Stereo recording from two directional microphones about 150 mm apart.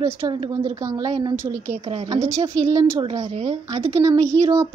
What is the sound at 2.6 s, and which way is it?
Speech, 20° right (ahead or behind).